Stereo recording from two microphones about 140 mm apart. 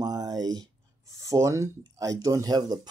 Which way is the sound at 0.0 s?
30° right (ahead or behind).